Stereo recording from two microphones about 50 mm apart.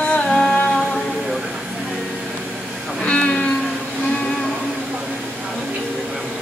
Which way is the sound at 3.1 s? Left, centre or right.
Left.